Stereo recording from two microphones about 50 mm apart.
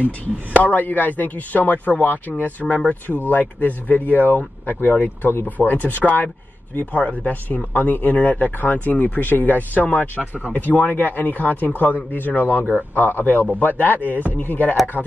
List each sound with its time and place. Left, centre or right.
0.6 s a man's voice: left